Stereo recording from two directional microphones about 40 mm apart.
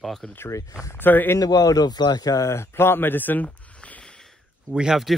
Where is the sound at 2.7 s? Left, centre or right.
Left.